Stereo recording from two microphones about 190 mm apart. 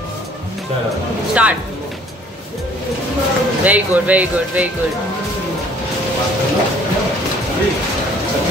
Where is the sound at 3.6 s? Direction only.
10° right (ahead or behind).